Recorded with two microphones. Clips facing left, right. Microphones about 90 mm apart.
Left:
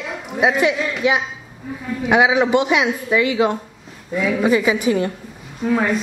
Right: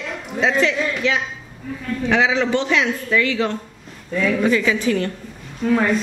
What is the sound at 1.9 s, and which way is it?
Speech, 15° left (ahead or behind).